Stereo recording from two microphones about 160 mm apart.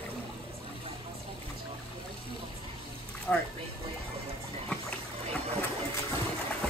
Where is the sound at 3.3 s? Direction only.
5° left (ahead or behind).